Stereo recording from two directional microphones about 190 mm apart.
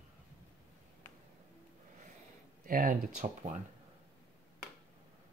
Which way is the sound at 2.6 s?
45° right (ahead or behind).